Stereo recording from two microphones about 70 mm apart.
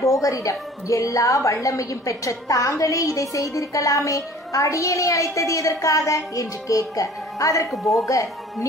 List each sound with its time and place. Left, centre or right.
0.0 s a woman's voice: left
7.7 s a woman's voice: centre
8.0 s a woman's voice: left